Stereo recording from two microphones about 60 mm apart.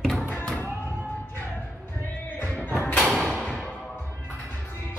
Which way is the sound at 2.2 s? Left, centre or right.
Left.